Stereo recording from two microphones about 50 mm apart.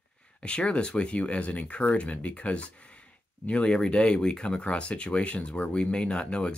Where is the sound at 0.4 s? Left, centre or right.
Centre.